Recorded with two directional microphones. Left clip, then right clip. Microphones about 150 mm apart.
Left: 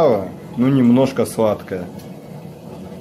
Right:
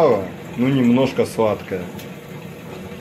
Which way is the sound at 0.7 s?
25° left (ahead or behind).